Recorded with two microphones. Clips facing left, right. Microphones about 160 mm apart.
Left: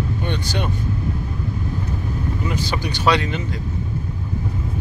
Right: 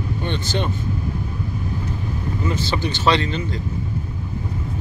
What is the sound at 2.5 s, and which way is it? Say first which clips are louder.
Speech: right 1 dB; 15° left (ahead or behind).